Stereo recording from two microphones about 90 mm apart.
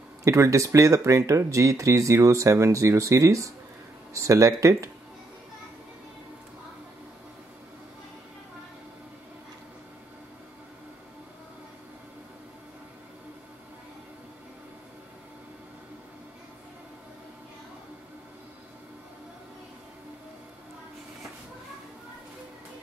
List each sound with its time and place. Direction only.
0.2 s speech: 35° right (ahead or behind)